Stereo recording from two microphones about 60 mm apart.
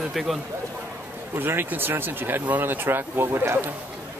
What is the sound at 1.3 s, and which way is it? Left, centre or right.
Speech, right.